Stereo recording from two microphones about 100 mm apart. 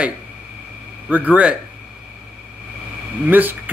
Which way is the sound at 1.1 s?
15° right (ahead or behind).